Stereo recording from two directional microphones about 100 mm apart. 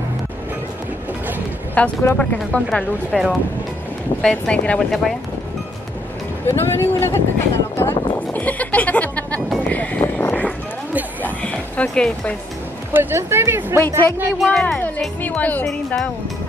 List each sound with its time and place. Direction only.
1.8 s speech: 15° left (ahead or behind)
3.1 s speech: 5° right (ahead or behind)
4.2 s speech: 10° left (ahead or behind)
6.4 s speech: 25° left (ahead or behind)
7.7 s a sound: 20° left (ahead or behind)
11.2 s music: 15° left (ahead or behind)
12.9 s speech: 25° right (ahead or behind)
13.7 s speech: 25° left (ahead or behind)
14.4 s speech: 5° left (ahead or behind)
15.2 s speech: 15° left (ahead or behind)